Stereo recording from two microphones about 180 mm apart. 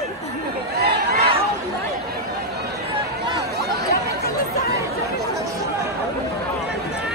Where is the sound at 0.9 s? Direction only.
65° right (ahead or behind).